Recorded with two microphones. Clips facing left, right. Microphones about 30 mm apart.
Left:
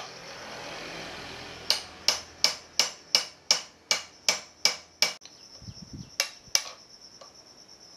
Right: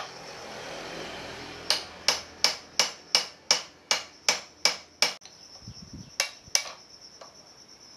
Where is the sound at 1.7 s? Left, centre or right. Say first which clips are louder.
Right 1 dB; centre.